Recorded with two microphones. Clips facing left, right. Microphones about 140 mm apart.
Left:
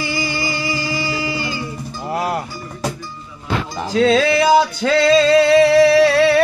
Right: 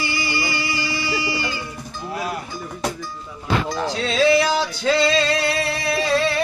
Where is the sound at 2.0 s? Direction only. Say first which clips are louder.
Left 6 dB; 70° left (ahead or behind).